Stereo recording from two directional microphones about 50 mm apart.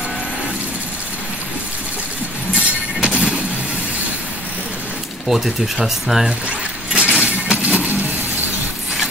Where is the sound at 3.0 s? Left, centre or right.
Centre.